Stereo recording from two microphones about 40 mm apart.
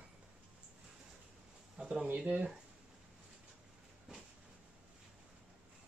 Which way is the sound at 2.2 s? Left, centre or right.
Right.